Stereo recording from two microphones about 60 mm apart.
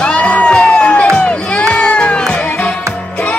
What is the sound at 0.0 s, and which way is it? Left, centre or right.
Crowd, centre.